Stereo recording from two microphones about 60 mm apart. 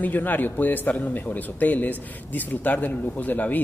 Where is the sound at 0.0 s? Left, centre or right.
Left.